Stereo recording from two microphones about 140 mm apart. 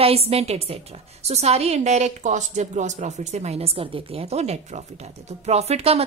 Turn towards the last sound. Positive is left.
turn(degrees=-45)  # may be behind; listen again after turning